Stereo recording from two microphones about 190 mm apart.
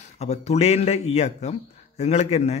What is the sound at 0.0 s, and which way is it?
Speech, 35° left (ahead or behind).